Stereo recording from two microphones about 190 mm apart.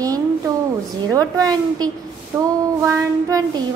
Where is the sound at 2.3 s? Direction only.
10° right (ahead or behind).